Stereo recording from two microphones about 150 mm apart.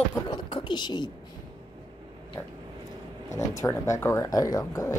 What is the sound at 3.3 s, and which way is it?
Speech, 20° left (ahead or behind).